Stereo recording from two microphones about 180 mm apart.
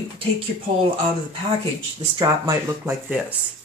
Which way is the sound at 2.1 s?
25° right (ahead or behind).